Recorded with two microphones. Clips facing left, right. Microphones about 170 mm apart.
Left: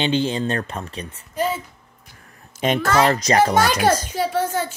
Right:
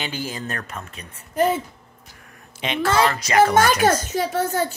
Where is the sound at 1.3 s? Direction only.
50° right (ahead or behind).